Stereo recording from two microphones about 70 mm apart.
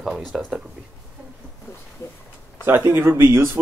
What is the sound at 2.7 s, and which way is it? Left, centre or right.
Speech, right.